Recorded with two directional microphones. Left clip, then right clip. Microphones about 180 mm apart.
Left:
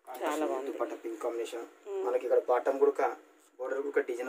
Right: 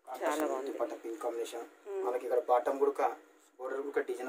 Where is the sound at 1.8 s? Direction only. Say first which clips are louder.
Left 2 dB; 5° left (ahead or behind).